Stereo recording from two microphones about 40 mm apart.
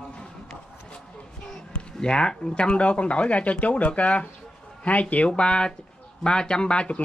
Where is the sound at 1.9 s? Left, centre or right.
Centre.